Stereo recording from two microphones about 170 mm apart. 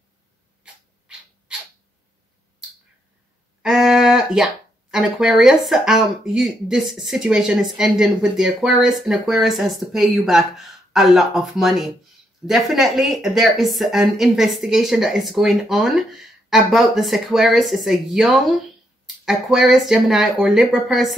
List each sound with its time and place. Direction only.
3.6 s speech: centre (ahead or behind)